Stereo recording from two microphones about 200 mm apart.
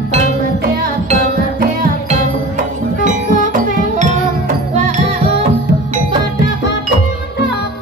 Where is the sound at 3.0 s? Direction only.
40° right (ahead or behind).